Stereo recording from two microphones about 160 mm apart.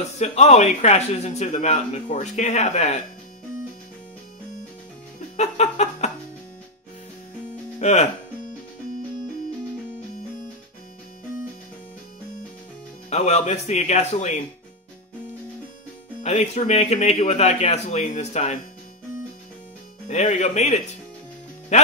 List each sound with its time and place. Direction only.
0.2 s speech: 45° left (ahead or behind)
5.4 s a sound: 45° left (ahead or behind)
7.8 s speech: 45° left (ahead or behind)
13.1 s speech: 45° left (ahead or behind)
16.2 s speech: 45° left (ahead or behind)
20.1 s speech: 45° left (ahead or behind)